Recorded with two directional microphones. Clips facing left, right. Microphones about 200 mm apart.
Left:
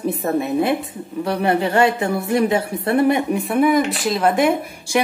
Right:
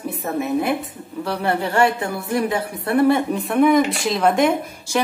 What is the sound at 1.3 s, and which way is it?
A woman's voice, 20° left (ahead or behind).